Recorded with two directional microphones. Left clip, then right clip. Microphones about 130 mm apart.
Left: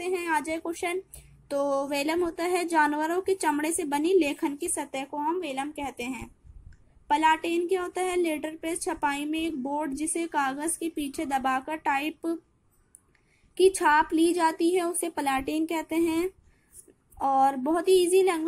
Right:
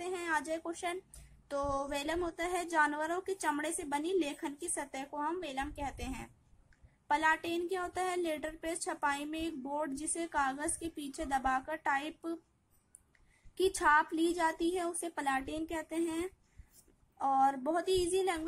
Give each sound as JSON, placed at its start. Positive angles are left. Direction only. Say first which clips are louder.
{"t": 0.0, "sound": "a sound", "louder": "left 8 dB", "side_deg": 20}
{"t": 1.5, "sound": "a woman's voice", "louder": "left 8 dB", "side_deg": 20}
{"t": 13.6, "sound": "a woman's voice", "louder": "left 7 dB", "side_deg": 20}